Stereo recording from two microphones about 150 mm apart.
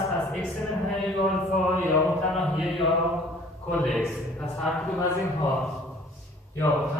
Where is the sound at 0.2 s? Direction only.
Centre (ahead or behind).